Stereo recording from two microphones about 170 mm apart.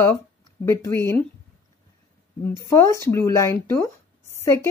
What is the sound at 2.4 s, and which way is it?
Speech, 15° left (ahead or behind).